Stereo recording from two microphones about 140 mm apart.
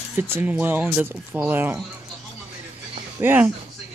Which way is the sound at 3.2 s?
15° right (ahead or behind).